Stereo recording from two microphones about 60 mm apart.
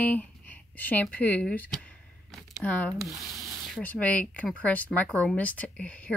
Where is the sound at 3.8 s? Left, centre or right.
Left.